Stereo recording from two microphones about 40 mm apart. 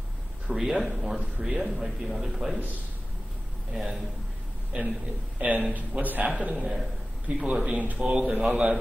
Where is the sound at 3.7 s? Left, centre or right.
Centre.